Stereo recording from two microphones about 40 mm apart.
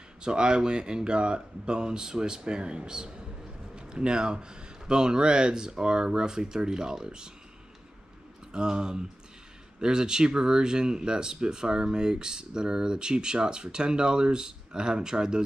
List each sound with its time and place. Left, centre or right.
0.2 s speech: right
8.5 s speech: centre